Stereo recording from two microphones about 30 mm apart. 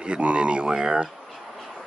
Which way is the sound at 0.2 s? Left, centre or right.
Right.